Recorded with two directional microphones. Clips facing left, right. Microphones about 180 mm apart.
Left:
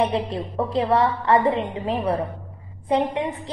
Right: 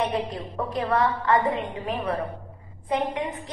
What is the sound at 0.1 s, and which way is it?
A woman's voice, 30° left (ahead or behind).